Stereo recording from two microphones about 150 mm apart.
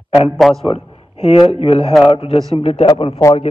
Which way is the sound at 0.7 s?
45° left (ahead or behind).